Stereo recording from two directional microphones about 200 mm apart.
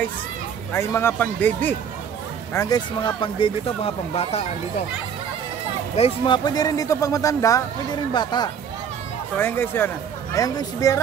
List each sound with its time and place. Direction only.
0.7 s speech: 10° left (ahead or behind); by 4.8 s 30° left (ahead or behind)
5.9 s speech: 25° left (ahead or behind)
9.4 s speech: 10° left (ahead or behind)